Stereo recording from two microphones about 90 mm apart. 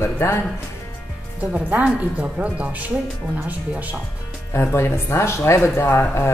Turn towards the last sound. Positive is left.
turn(degrees=30)  # may be behind; listen again after turning